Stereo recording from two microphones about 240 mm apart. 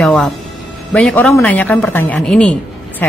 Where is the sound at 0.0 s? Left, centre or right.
Centre.